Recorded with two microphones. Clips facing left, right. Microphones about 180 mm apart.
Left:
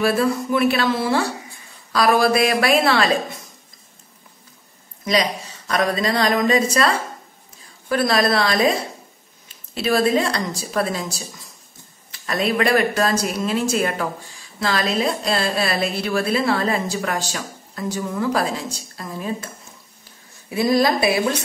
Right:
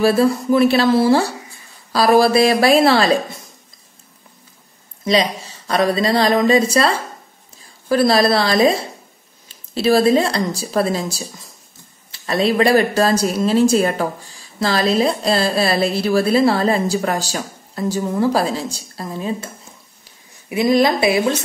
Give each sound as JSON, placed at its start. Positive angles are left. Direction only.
{"t": 0.0, "sound": "a woman's voice", "side_deg": -30}
{"t": 5.0, "sound": "a woman's voice", "side_deg": -30}
{"t": 7.9, "sound": "a woman's voice", "side_deg": -30}
{"t": 9.8, "sound": "a woman's voice", "side_deg": -30}